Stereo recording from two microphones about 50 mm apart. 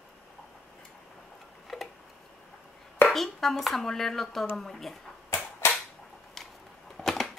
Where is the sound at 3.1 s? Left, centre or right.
Centre.